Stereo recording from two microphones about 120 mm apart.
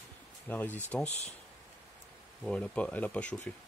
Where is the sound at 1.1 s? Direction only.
65° left (ahead or behind).